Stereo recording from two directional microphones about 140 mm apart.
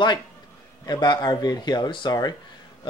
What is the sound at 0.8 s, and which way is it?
Speech, 30° left (ahead or behind).